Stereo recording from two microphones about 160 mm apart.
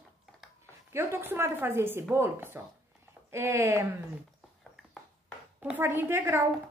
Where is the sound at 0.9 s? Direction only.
15° right (ahead or behind).